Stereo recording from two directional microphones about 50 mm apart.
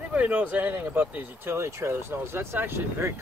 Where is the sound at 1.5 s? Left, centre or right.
Right.